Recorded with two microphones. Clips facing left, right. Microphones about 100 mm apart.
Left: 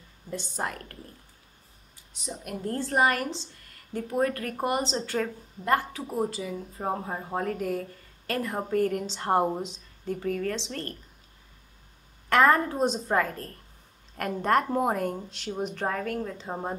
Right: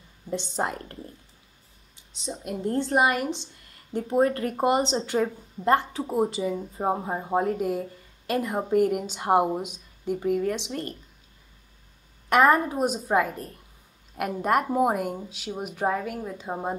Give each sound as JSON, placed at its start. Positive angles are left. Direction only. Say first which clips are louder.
{"t": 0.3, "sound": "a woman's voice", "louder": "right 5 dB", "side_deg": -20}
{"t": 2.0, "sound": "a woman's voice", "louder": "right 3 dB", "side_deg": -25}
{"t": 12.3, "sound": "a woman's voice", "louder": "right 2 dB", "side_deg": -15}